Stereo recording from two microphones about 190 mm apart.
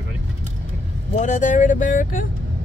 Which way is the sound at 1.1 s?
40° left (ahead or behind).